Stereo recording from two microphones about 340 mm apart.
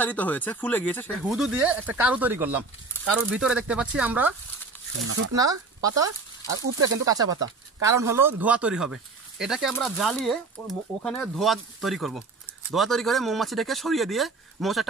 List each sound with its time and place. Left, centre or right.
0.0 s speech: centre
5.0 s speech: right
5.3 s speech: centre
7.1 s speech: centre